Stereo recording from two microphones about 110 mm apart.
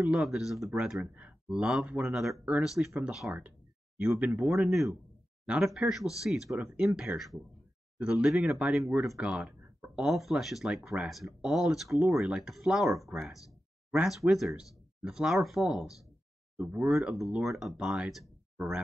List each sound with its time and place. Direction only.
0.0 s speech: 5° right (ahead or behind)
4.3 s speech: 20° right (ahead or behind)
4.6 s speech: centre (ahead or behind)
6.5 s speech: 15° right (ahead or behind)
6.9 s speech: 5° right (ahead or behind)
9.2 s a sound: 10° right (ahead or behind)
10.0 s speech: 5° right (ahead or behind)